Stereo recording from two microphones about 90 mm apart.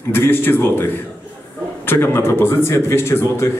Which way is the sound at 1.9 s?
25° left (ahead or behind).